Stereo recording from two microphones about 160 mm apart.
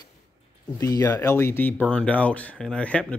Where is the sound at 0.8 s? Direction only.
20° left (ahead or behind).